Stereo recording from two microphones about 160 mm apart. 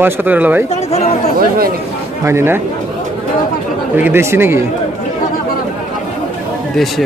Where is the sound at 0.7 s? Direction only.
40° left (ahead or behind).